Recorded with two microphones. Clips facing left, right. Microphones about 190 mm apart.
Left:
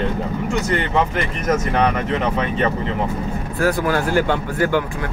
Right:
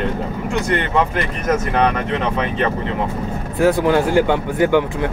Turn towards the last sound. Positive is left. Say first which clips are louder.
# right 4 dB
turn(degrees=-20)  # may be behind; listen again after turning